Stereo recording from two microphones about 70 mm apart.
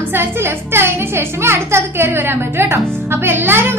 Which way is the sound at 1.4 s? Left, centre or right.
Right.